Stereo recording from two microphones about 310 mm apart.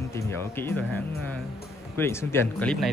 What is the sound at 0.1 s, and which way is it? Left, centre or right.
Speech, centre.